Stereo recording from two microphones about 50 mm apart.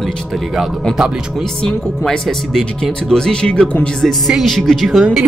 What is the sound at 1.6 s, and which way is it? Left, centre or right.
Speech, centre.